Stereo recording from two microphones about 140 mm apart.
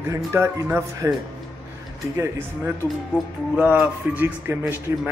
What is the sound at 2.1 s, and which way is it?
Speech, 20° right (ahead or behind).